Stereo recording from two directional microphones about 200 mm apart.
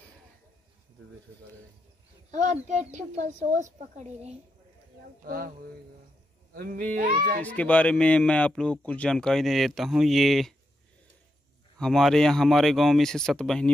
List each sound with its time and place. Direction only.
2.3 s a woman's voice: 35° right (ahead or behind)
5.2 s speech: 45° right (ahead or behind)
6.5 s speech: 45° right (ahead or behind)
7.4 s speech: 5° left (ahead or behind)
11.8 s speech: centre (ahead or behind)